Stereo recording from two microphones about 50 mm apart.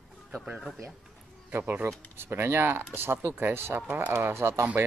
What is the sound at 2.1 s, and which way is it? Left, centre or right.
Speech, right.